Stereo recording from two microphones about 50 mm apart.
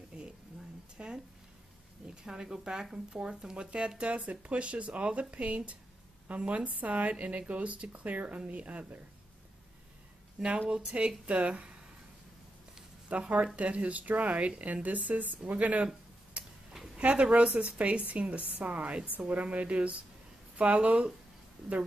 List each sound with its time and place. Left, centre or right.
0.1 s a sound: centre
2.2 s a woman's voice: centre; by 9.0 s right
10.7 s speech: centre
13.1 s speech: right
16.4 s a sound: right
16.9 s speech: right